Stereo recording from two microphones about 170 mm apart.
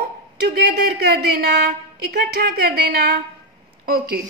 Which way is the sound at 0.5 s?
70° right (ahead or behind).